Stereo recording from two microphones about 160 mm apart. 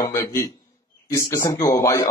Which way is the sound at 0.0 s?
20° left (ahead or behind).